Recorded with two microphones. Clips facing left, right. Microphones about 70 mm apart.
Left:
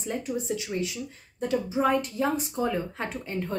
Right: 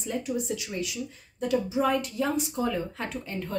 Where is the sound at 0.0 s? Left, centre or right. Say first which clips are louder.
Even; left.